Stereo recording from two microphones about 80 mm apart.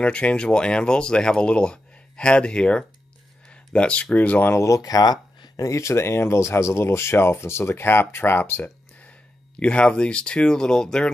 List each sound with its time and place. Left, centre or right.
0.0 s speech: centre
4.6 s speech: left; by 11.1 s centre